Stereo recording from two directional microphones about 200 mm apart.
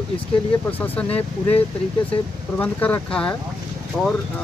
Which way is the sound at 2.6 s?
10° left (ahead or behind).